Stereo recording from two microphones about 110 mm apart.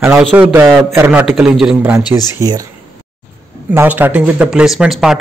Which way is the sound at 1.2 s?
5° right (ahead or behind).